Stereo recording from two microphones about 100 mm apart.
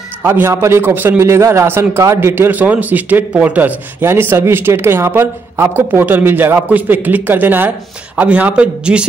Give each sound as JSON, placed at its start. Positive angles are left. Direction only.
{"t": 0.2, "sound": "a man's voice", "side_deg": -25}